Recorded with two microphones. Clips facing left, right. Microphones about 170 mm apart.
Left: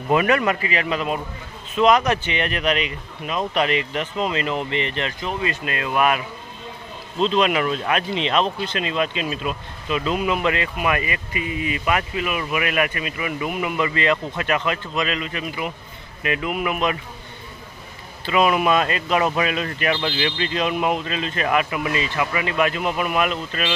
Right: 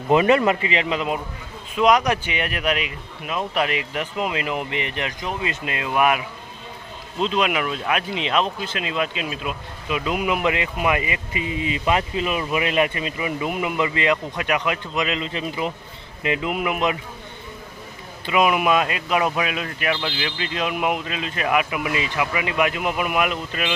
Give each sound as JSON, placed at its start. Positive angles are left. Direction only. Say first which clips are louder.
{"t": 0.1, "sound": "speech", "louder": "right 2 dB", "side_deg": -25}
{"t": 18.2, "sound": "speech", "louder": "left 1 dB", "side_deg": -15}